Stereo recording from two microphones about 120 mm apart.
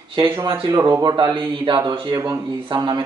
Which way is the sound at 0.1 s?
40° right (ahead or behind).